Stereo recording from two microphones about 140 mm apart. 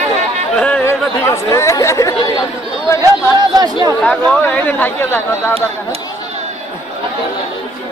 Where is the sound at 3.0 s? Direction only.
30° right (ahead or behind).